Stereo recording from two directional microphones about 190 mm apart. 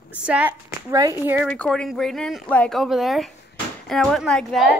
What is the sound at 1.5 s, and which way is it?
Speech, 5° left (ahead or behind).